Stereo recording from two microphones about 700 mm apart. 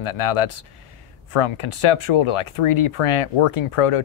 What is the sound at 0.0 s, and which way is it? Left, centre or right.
Speech, left.